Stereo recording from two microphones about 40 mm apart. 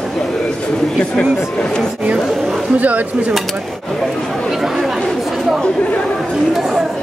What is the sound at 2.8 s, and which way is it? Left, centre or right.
Speech, right.